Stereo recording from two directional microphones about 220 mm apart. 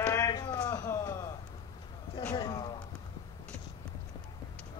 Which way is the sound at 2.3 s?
20° left (ahead or behind).